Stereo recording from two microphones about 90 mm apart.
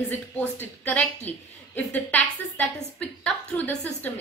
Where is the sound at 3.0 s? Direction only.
15° left (ahead or behind).